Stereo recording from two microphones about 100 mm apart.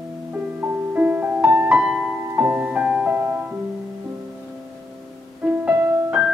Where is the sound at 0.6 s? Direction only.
15° right (ahead or behind).